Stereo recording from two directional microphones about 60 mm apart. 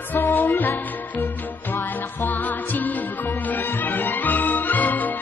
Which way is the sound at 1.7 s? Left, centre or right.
Left.